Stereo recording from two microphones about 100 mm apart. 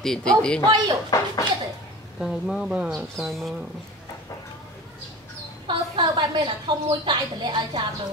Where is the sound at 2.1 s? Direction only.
5° right (ahead or behind).